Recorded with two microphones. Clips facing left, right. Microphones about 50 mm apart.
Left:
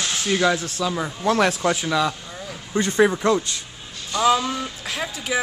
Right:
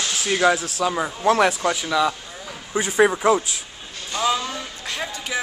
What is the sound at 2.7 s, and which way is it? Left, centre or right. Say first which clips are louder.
Speech: even; centre.